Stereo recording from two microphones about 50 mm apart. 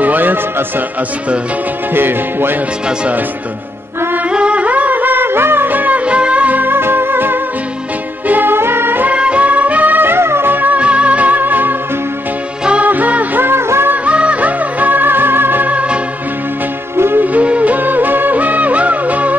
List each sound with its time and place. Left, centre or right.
0.0 s music: right
2.0 s music: right
4.3 s music: right
9.1 s music: right
10.8 s music: right
12.8 s music: right
13.5 s music: right
14.0 s music: right
16.9 s music: right
17.2 s music: right